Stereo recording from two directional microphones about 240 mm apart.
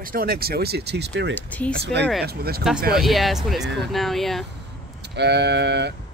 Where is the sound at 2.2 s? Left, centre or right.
Right.